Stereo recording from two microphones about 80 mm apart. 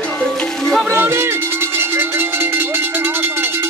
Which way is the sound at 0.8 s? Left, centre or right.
Right.